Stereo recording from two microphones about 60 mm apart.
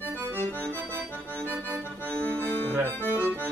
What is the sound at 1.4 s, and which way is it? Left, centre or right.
Speech, right.